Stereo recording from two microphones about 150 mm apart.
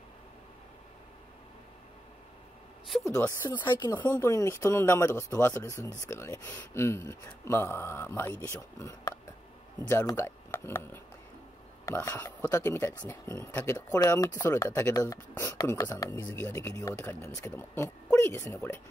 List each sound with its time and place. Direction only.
3.1 s speech: 20° left (ahead or behind)